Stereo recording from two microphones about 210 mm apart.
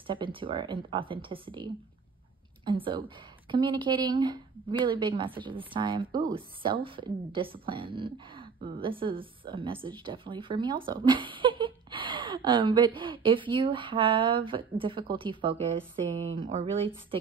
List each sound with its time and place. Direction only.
0.0 s a woman's voice: 25° right (ahead or behind)